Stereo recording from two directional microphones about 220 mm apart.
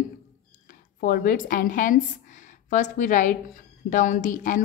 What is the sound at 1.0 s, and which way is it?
A woman's voice, 40° left (ahead or behind).